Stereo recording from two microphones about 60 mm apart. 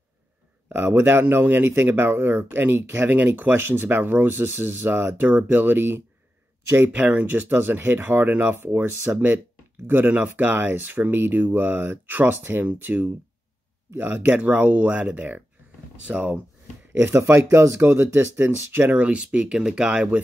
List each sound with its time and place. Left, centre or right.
0.7 s speech: right
6.9 s speech: right
17.5 s speech: right; by 20.2 s centre